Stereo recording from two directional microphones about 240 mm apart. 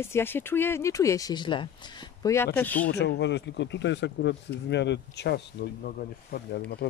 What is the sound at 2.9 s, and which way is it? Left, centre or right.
Speech, left.